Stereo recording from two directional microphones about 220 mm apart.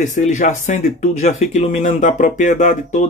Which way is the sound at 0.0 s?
35° left (ahead or behind).